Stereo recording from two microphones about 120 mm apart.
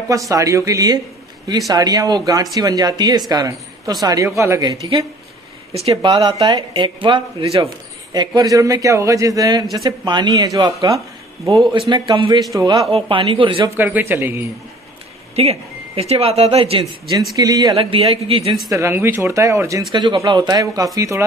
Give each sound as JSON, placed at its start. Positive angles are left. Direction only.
{"t": 0.1, "sound": "a man's voice", "side_deg": -25}
{"t": 5.7, "sound": "speech", "side_deg": -55}
{"t": 7.6, "sound": "a sound", "side_deg": -35}
{"t": 8.4, "sound": "a man's voice", "side_deg": -30}
{"t": 11.9, "sound": "speech", "side_deg": -45}
{"t": 13.7, "sound": "a man's voice", "side_deg": -15}
{"t": 15.3, "sound": "speech", "side_deg": -55}
{"t": 17.4, "sound": "speech", "side_deg": -35}
{"t": 17.7, "sound": "speech", "side_deg": -50}
{"t": 18.7, "sound": "a man's voice", "side_deg": -20}
{"t": 19.9, "sound": "a man's voice", "side_deg": -40}